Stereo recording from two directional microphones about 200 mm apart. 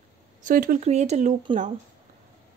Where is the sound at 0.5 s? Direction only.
45° right (ahead or behind).